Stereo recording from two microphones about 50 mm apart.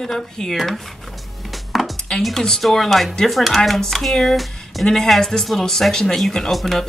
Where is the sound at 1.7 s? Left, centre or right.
Centre.